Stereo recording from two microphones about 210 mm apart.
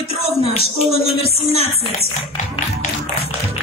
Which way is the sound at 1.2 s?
30° left (ahead or behind).